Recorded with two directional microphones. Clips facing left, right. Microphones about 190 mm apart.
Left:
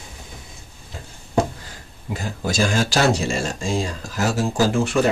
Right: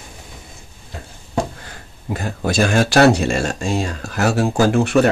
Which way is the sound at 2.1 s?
60° right (ahead or behind).